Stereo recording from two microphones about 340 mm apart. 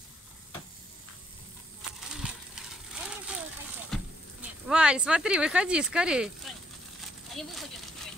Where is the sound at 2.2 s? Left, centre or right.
Centre.